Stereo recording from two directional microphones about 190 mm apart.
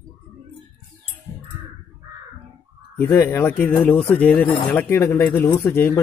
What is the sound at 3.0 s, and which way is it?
Speech, 15° left (ahead or behind).